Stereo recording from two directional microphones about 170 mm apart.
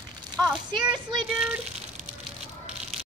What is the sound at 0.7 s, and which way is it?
Music, 30° right (ahead or behind).